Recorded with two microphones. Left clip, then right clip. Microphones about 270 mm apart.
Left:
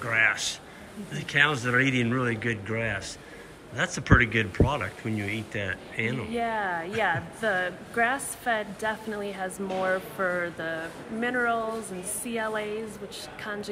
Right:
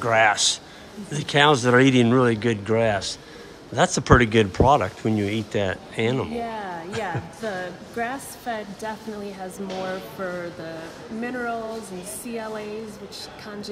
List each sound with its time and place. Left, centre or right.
0.0 s speech: centre